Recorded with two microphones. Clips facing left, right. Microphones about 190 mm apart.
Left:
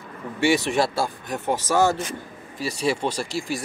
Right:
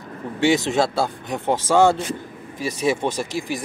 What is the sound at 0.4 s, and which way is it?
Speech, 20° right (ahead or behind).